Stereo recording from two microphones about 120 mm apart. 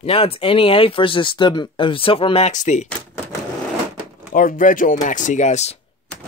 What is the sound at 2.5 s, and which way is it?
Speech, 85° left.